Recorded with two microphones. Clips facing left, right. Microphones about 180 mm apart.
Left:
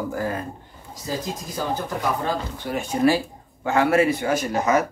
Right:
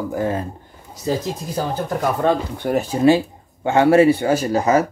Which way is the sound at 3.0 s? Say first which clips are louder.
Right 5 dB; 25° right (ahead or behind).